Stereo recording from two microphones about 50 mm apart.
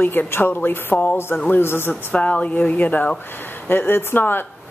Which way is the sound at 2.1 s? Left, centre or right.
Left.